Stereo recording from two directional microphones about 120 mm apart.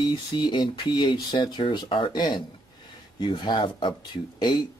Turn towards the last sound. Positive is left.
turn(degrees=35)  # may be behind; listen again after turning